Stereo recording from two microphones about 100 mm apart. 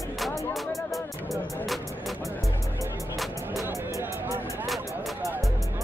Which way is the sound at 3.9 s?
30° right (ahead or behind).